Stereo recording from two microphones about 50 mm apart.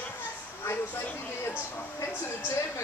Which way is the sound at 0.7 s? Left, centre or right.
Left.